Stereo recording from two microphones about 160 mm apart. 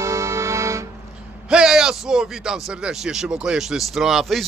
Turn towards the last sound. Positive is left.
turn(degrees=0)  # may be behind; listen again after turning